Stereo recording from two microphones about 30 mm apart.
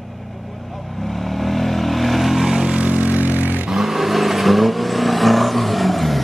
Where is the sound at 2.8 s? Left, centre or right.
Right.